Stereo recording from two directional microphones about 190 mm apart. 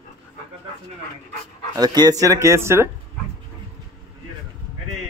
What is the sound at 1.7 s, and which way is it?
Speech, 20° right (ahead or behind).